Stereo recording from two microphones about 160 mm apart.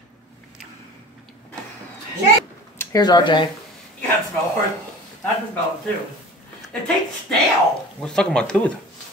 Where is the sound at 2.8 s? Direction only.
25° left (ahead or behind).